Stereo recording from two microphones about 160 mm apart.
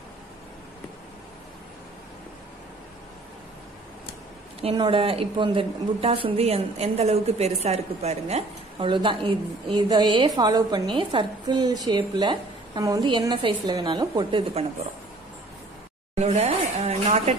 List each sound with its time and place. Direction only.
4.6 s a woman's voice: 35° right (ahead or behind)
16.2 s speech: 45° right (ahead or behind)